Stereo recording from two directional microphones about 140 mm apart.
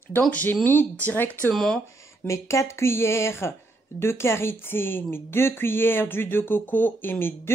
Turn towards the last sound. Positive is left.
turn(degrees=15)  # may be behind; listen again after turning